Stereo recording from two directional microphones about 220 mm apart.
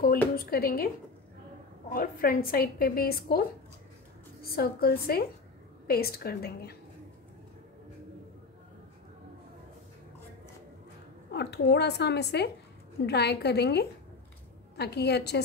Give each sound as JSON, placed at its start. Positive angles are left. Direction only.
{"t": 0.4, "sound": "a woman's voice", "side_deg": 40}
{"t": 1.9, "sound": "a woman's voice", "side_deg": 40}
{"t": 4.6, "sound": "a woman's voice", "side_deg": 45}
{"t": 11.3, "sound": "a woman's voice", "side_deg": 50}